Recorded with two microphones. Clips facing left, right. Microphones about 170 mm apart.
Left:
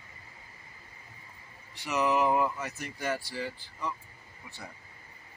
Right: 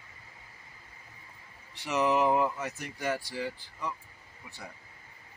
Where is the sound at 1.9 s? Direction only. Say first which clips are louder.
Right 1 dB; 25° right (ahead or behind).